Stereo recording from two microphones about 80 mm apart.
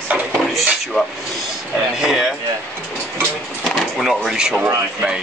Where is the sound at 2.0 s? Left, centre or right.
Centre.